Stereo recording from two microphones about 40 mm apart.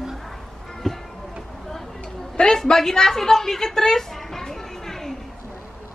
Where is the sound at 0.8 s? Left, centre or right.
Centre.